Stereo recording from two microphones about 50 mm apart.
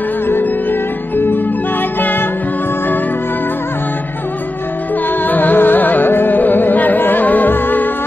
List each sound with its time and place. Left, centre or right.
0.3 s music: left
5.2 s music: left